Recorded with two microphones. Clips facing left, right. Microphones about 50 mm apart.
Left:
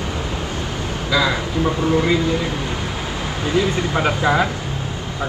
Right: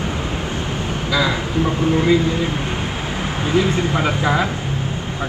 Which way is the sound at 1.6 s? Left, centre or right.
Right.